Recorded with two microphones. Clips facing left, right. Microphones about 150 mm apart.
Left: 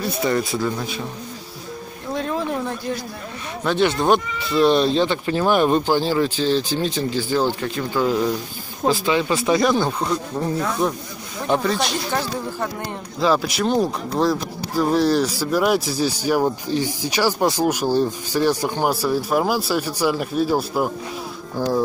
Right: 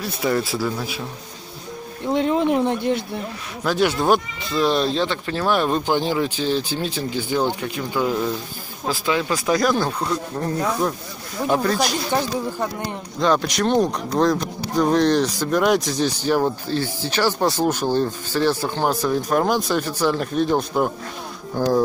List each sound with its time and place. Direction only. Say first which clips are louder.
0.0 s speech: left 1 dB; centre (ahead or behind)
2.1 s speech: right 5 dB; 20° right (ahead or behind)
3.6 s speech: left 1 dB; 5° right (ahead or behind)
5.9 s speech: left 2 dB; 15° right (ahead or behind)
8.8 s speech: left 3 dB; centre (ahead or behind)
13.2 s speech: even; 5° left (ahead or behind)